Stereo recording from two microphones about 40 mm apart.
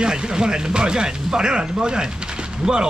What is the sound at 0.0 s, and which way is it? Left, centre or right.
Speech, right.